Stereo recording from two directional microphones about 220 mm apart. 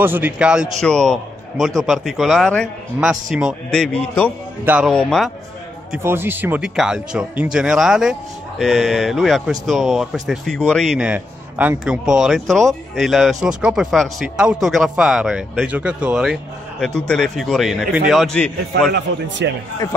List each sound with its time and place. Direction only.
0.0 s speech: 10° right (ahead or behind)
5.9 s speech: 10° right (ahead or behind)
19.4 s speech: 50° right (ahead or behind)